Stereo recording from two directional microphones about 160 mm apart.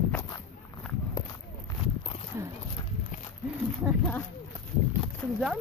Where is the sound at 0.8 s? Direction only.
5° left (ahead or behind).